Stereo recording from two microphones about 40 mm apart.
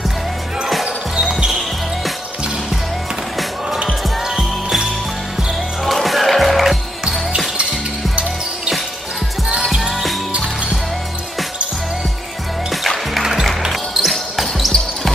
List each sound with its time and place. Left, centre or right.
4.4 s jingle bell: centre
6.0 s music: centre
9.5 s music: centre
12.8 s music: centre
13.7 s basketball bounce: centre